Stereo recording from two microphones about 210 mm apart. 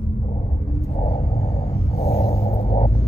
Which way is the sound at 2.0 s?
30° left (ahead or behind).